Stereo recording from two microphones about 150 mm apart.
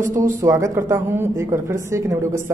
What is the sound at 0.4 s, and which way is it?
Speech, 20° right (ahead or behind).